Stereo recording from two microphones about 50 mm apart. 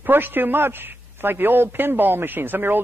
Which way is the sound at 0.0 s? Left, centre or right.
Right.